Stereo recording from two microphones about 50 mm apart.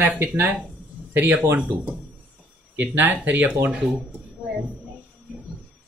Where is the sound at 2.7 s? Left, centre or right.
Right.